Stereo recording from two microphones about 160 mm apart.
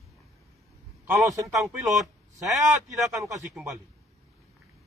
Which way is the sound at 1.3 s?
20° right (ahead or behind).